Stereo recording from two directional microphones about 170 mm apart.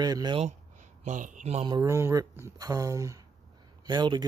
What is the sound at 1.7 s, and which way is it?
Speech, 20° right (ahead or behind).